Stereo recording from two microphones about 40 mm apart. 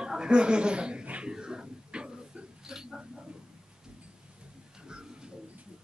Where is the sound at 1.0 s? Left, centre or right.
Right.